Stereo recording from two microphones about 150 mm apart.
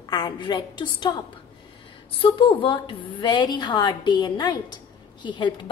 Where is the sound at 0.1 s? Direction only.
30° left (ahead or behind).